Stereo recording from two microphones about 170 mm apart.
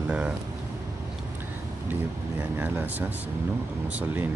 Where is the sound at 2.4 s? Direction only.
10° right (ahead or behind).